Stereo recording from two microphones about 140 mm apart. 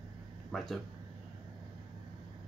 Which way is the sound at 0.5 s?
Centre (ahead or behind).